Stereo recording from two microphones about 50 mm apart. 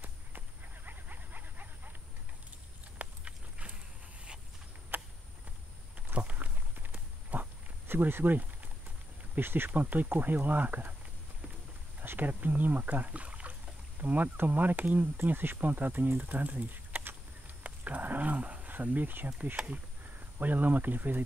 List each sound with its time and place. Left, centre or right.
0.8 s dog: right
3.0 s horse: right
4.9 s a sound: right
6.1 s walk: right
7.9 s speech: right
9.7 s speech: right
12.0 s speech: right
17.6 s a sound: right
19.4 s speech: right